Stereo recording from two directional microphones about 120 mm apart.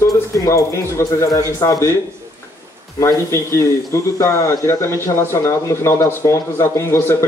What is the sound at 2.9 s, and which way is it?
Speech, 25° left (ahead or behind).